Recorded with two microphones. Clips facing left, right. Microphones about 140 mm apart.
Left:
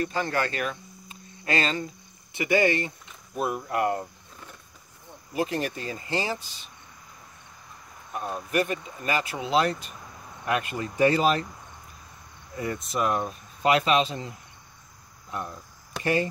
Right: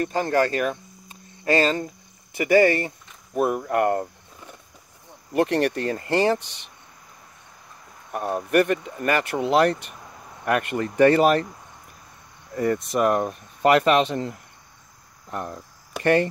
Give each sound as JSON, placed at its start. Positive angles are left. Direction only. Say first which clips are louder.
{"t": 0.0, "sound": "speech", "louder": "right 6 dB", "side_deg": -40}
{"t": 3.3, "sound": "speech", "louder": "right 6 dB", "side_deg": -60}
{"t": 5.3, "sound": "speech", "louder": "right 7 dB", "side_deg": -65}
{"t": 8.1, "sound": "speech", "louder": "right 7 dB", "side_deg": -60}
{"t": 12.9, "sound": "speech", "louder": "right 2 dB", "side_deg": -55}
{"t": 16.0, "sound": "speech", "louder": "right 6 dB", "side_deg": -60}